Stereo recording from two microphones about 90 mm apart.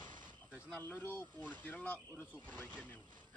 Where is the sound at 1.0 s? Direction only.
25° left (ahead or behind).